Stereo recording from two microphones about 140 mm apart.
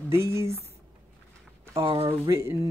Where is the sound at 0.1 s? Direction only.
20° right (ahead or behind).